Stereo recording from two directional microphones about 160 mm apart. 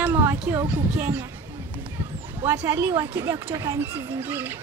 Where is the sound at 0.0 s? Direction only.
15° right (ahead or behind).